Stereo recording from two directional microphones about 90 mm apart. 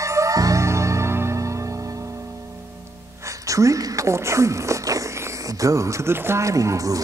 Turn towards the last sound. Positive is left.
turn(degrees=-35)  # may be behind; listen again after turning